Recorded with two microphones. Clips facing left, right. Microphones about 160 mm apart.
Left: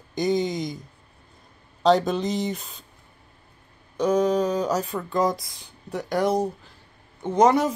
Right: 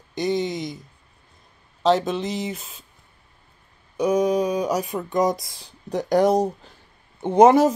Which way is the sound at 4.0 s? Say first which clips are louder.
Right 1 dB; 10° right (ahead or behind).